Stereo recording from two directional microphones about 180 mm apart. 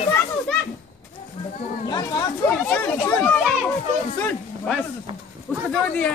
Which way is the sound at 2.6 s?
10° left (ahead or behind).